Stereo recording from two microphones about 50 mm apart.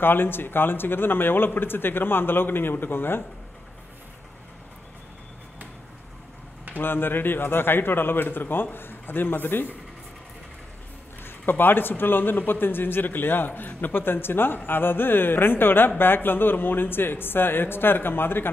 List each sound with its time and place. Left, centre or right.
0.0 s a man's voice: left
6.7 s a man's voice: left
11.2 s a man's voice: left